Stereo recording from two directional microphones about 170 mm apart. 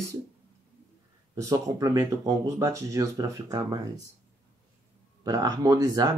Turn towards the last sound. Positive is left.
turn(degrees=-20)  # may be behind; listen again after turning